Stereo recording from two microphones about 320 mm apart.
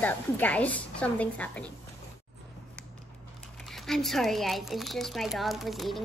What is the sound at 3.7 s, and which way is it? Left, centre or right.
Speech, centre.